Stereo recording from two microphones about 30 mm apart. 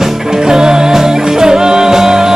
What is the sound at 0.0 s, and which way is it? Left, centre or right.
Music, centre.